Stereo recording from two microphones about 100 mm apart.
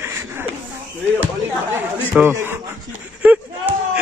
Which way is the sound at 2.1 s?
20° right (ahead or behind).